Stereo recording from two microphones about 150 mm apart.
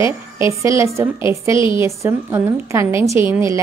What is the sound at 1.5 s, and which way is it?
Speech, 35° left (ahead or behind).